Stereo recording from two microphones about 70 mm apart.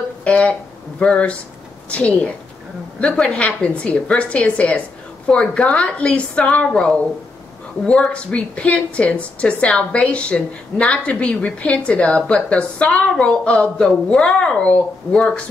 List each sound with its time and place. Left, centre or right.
0.2 s a woman's voice: centre